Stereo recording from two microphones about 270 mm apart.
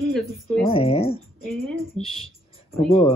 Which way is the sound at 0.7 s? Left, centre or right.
Left.